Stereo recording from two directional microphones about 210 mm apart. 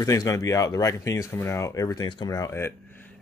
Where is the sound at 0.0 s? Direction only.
15° left (ahead or behind).